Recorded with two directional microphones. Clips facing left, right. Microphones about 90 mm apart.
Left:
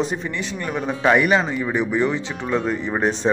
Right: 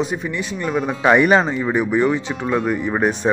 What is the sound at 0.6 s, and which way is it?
Speech, 15° right (ahead or behind).